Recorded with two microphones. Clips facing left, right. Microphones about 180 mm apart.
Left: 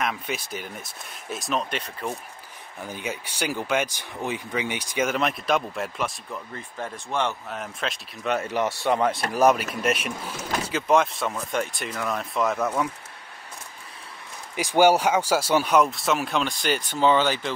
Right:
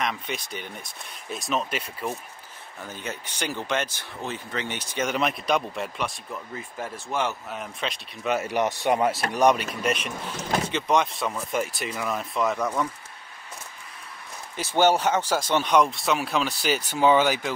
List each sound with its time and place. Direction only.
0.0 s speech: 5° left (ahead or behind)
2.8 s speech: 10° left (ahead or behind)
5.1 s speech: centre (ahead or behind)
8.5 s speech: 20° right (ahead or behind)
9.1 s speech: centre (ahead or behind)
14.5 s speech: 10° left (ahead or behind); by 17.5 s 10° right (ahead or behind)